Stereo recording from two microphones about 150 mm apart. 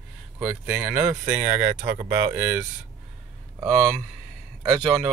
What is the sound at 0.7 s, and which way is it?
Speech, 5° right (ahead or behind).